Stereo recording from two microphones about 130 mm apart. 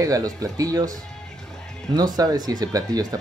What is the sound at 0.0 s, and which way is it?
Speech, 25° right (ahead or behind).